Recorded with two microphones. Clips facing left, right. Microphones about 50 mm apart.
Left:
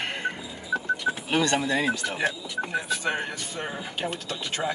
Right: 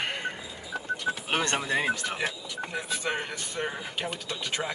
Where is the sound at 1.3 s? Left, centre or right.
Right.